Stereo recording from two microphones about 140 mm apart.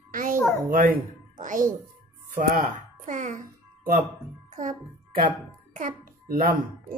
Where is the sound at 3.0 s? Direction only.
65° right (ahead or behind).